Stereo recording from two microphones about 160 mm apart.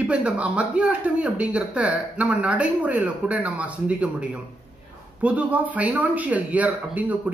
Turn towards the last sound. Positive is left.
turn(degrees=-10)  # may be behind; listen again after turning